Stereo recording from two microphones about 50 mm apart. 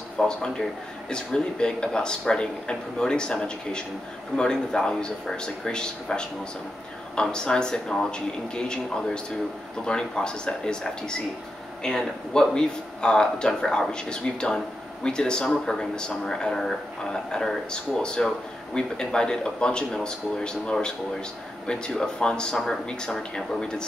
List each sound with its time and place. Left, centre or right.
0.3 s speech: centre